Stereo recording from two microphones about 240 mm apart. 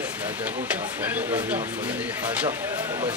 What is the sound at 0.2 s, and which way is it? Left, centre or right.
Speech, centre.